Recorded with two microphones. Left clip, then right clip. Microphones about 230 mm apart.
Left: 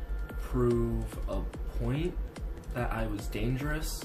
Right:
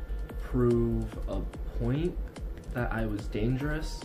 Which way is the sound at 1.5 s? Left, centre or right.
Centre.